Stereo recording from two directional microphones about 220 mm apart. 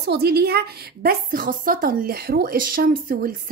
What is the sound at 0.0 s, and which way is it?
A woman's voice, 45° right (ahead or behind).